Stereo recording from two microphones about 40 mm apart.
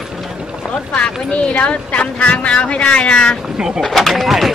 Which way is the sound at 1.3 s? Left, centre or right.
Left.